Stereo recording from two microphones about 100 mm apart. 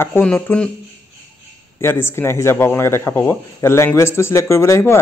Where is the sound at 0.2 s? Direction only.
10° left (ahead or behind).